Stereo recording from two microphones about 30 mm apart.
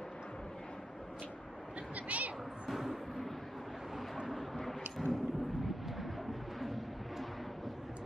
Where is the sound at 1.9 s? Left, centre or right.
Right.